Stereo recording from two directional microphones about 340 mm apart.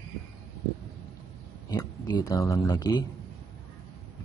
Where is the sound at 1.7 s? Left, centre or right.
Centre.